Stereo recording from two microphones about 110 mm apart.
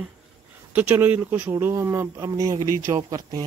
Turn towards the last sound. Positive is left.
turn(degrees=-35)  # may be behind; listen again after turning